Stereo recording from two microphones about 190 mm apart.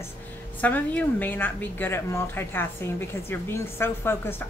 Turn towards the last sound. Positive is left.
turn(degrees=10)  # may be behind; listen again after turning